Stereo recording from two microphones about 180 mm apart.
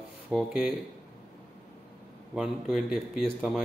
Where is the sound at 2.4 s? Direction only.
Centre (ahead or behind).